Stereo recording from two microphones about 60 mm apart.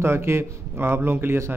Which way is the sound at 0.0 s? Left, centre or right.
Right.